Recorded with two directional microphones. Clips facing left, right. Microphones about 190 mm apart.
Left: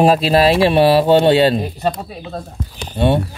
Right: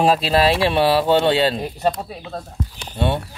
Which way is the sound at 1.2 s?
45° left (ahead or behind).